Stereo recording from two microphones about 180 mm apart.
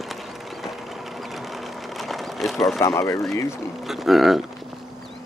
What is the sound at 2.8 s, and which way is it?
Speech, 15° left (ahead or behind).